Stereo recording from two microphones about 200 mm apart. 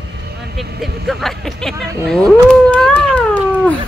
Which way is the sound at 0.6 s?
Centre (ahead or behind).